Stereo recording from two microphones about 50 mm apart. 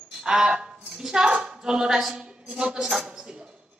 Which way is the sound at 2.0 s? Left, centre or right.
Centre.